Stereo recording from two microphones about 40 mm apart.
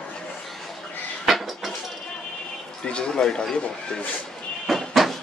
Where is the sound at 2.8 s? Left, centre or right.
Left.